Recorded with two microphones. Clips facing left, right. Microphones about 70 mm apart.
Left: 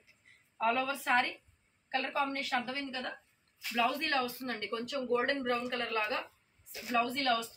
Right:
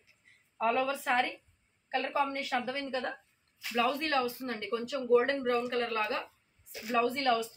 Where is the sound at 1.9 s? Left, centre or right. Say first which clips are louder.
Right 2 dB; right.